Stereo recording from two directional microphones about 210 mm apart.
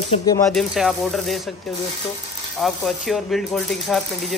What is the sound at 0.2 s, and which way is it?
Speech, 15° left (ahead or behind).